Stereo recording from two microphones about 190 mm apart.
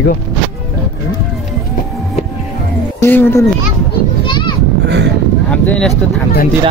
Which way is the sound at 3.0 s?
10° left (ahead or behind).